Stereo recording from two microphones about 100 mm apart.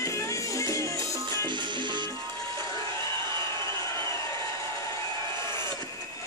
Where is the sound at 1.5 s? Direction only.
50° right (ahead or behind).